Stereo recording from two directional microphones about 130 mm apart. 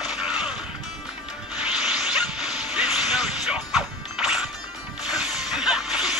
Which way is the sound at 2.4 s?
5° right (ahead or behind).